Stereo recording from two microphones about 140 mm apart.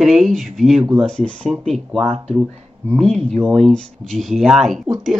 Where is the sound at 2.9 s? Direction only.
Centre (ahead or behind).